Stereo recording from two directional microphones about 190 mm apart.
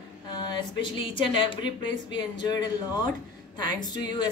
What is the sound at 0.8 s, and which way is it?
Speech, 25° left (ahead or behind).